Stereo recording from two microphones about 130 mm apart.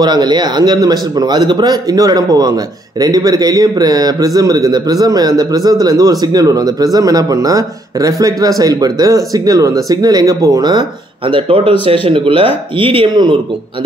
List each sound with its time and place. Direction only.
0.0 s speech: 35° right (ahead or behind)